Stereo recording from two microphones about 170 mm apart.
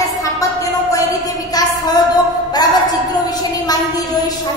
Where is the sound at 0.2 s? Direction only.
20° left (ahead or behind).